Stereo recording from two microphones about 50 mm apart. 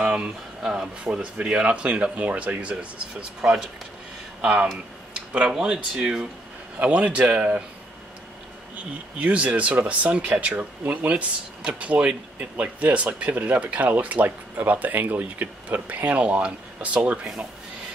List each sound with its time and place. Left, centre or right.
0.0 s speech: centre
5.6 s speech: centre
6.8 s speech: right
9.2 s speech: right